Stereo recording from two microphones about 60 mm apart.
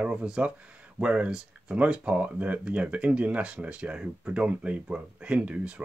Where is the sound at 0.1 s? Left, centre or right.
Centre.